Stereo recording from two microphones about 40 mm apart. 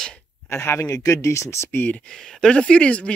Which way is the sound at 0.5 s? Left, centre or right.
Left.